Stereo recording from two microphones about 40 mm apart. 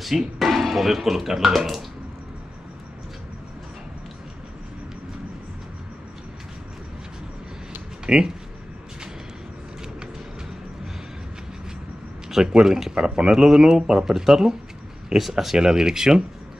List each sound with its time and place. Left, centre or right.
0.0 s speech: centre
8.1 s speech: right
12.5 s speech: centre